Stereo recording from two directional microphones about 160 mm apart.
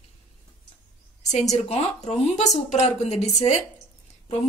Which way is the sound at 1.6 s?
40° left (ahead or behind).